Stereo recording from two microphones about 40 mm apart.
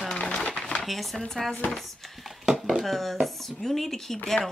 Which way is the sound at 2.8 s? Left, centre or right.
Centre.